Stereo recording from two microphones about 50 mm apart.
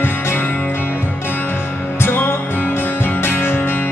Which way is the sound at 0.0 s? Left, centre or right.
Left.